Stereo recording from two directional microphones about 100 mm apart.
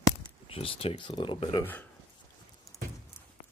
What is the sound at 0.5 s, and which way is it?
Speech, 75° left (ahead or behind).